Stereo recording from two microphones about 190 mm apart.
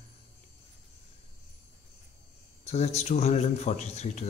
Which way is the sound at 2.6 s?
35° left (ahead or behind).